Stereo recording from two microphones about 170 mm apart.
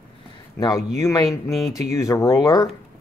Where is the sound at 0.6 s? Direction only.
20° left (ahead or behind).